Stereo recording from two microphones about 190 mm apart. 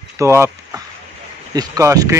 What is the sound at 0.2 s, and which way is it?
Speech, 15° right (ahead or behind).